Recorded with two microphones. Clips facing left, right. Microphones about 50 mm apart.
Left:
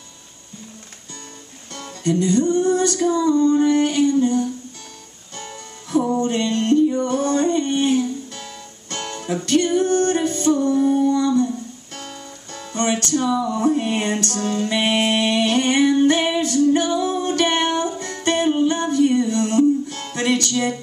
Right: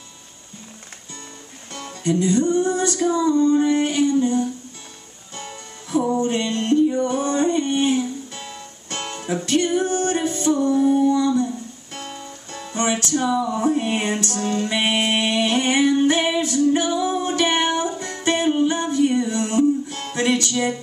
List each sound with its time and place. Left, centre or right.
1.7 s music: centre